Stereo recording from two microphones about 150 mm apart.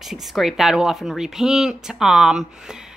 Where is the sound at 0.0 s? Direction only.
Centre (ahead or behind).